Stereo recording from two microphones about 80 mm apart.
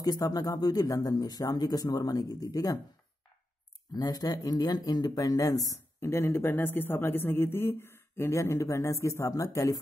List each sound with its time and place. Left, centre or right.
0.0 s speech: left
3.9 s speech: left
5.9 s speech: left